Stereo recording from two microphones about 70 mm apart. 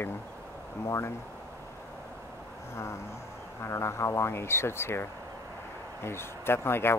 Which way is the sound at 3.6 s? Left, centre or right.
Left.